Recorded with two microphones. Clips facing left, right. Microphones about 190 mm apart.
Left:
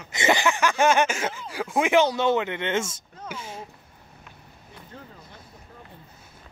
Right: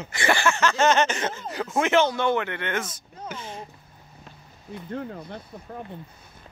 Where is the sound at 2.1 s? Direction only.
20° left (ahead or behind).